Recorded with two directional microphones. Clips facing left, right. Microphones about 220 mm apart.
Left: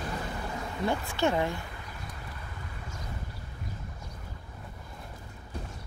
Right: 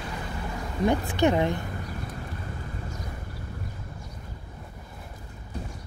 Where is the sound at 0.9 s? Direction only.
20° right (ahead or behind).